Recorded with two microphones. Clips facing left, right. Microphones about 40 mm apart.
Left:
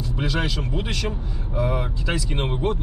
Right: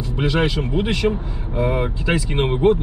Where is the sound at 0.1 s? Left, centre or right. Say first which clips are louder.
Right 7 dB; right.